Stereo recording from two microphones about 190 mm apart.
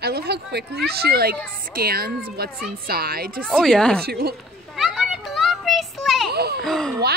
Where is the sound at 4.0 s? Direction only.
55° right (ahead or behind).